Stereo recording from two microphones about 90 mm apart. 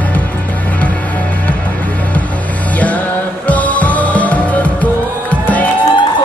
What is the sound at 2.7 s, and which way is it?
Music, 15° left (ahead or behind).